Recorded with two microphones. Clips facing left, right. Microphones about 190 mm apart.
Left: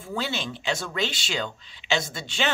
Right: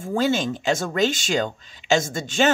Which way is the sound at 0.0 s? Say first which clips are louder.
Right 9 dB; 45° right (ahead or behind).